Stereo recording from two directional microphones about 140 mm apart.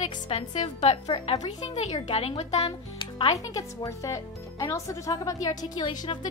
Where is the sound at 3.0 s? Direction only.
40° left (ahead or behind).